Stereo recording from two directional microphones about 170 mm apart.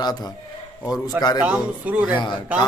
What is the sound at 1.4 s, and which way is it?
Speech, 10° right (ahead or behind).